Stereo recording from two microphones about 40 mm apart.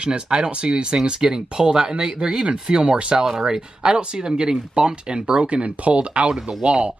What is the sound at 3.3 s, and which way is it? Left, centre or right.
Speech, centre.